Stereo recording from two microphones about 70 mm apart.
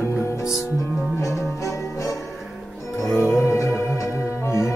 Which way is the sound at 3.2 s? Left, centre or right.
Left.